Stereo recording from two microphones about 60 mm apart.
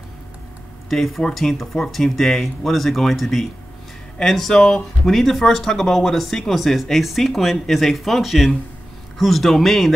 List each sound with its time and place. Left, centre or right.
0.8 s speech: centre